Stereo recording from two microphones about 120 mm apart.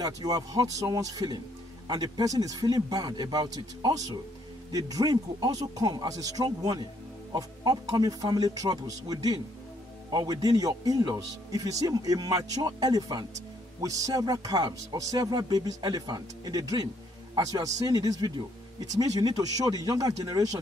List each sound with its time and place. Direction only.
0.0 s speech: 30° right (ahead or behind)